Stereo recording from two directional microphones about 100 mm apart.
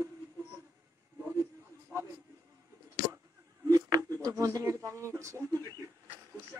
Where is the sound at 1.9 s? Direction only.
25° right (ahead or behind).